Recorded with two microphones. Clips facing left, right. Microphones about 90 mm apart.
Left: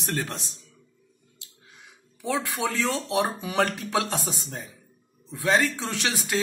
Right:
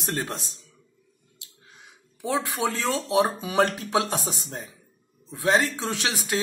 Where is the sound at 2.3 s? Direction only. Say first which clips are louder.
Right 1 dB; 25° right (ahead or behind).